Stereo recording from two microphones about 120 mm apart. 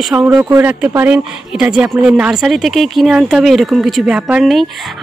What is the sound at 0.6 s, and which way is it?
A woman's voice, 15° right (ahead or behind).